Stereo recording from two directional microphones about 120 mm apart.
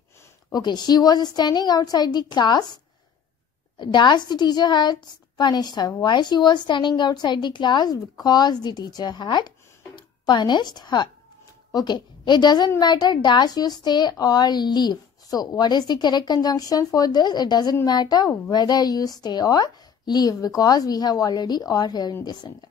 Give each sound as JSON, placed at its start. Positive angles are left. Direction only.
{"t": 0.5, "sound": "a woman's voice", "side_deg": 35}